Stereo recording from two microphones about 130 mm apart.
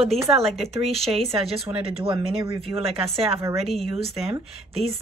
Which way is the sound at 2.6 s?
50° right (ahead or behind).